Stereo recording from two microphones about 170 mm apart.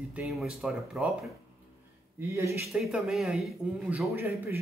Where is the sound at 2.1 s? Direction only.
15° right (ahead or behind).